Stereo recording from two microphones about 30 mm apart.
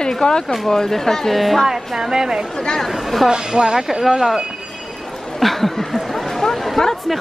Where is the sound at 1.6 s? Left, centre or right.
Centre.